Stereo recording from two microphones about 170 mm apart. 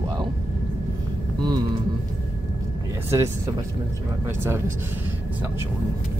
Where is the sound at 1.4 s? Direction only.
25° right (ahead or behind).